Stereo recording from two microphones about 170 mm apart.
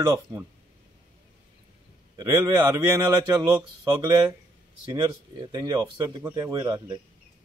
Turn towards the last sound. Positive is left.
turn(degrees=-25)  # may be behind; listen again after turning